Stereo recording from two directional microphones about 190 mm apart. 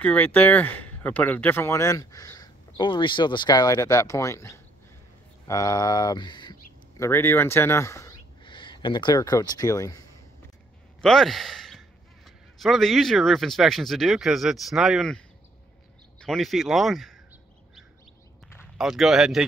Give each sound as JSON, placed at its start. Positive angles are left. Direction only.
{"t": 0.0, "sound": "speech", "side_deg": 10}
{"t": 11.0, "sound": "speech", "side_deg": 0}
{"t": 18.8, "sound": "speech", "side_deg": 0}